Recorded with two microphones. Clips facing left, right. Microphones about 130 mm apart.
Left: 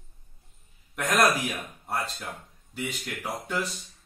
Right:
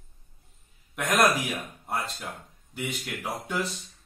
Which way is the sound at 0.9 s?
15° right (ahead or behind).